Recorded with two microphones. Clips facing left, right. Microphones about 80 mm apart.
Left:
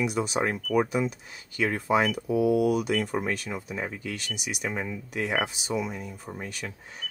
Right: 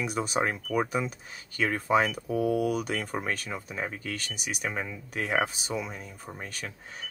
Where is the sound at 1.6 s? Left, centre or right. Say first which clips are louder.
Left 1 dB; right.